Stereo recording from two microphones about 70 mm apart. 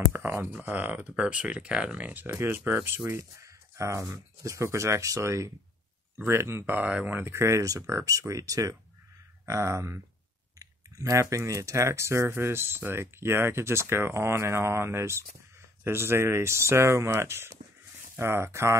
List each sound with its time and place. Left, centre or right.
0.1 s speech: right
2.2 s speech: right
3.1 s speech: right
6.1 s speech: right